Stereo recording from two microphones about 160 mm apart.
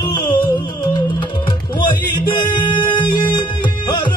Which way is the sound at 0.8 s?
30° left (ahead or behind).